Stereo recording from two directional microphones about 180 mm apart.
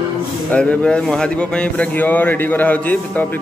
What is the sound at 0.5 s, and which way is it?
A man's voice, 5° left (ahead or behind).